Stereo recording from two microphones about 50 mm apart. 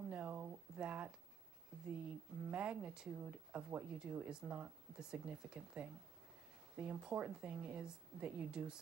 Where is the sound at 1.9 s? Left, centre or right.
Centre.